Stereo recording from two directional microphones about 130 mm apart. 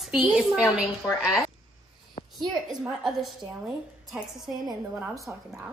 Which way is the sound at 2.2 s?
60° left (ahead or behind).